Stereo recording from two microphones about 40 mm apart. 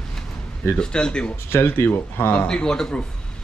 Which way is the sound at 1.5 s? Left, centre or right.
Left.